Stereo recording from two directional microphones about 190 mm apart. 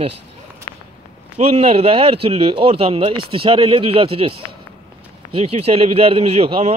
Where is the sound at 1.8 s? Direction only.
30° right (ahead or behind).